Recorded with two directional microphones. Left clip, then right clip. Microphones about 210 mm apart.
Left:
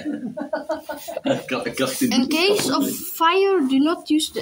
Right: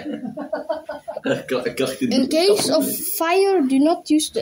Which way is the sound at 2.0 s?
15° right (ahead or behind).